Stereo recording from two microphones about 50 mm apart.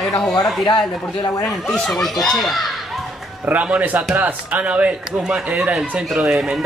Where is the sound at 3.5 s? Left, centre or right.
Right.